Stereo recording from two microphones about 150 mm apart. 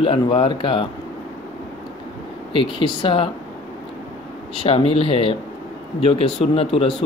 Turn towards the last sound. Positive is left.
turn(degrees=40)  # may be behind; listen again after turning